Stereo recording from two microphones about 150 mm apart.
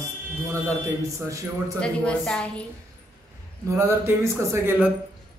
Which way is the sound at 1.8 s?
5° left (ahead or behind).